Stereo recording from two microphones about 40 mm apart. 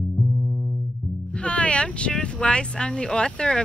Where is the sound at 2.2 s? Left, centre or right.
Left.